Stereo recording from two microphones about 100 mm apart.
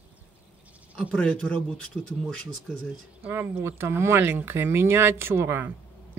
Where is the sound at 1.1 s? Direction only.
15° left (ahead or behind).